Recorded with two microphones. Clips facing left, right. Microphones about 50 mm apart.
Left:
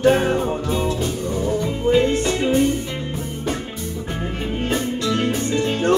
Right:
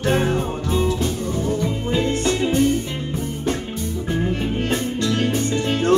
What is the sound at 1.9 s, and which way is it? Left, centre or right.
Music, centre.